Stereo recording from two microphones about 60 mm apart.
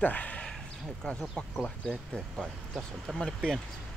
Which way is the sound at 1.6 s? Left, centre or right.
Centre.